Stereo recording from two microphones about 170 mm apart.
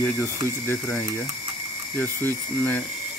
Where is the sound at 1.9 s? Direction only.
10° left (ahead or behind).